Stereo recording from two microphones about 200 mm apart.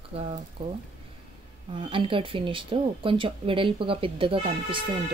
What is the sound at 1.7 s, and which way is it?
Speech, 25° right (ahead or behind).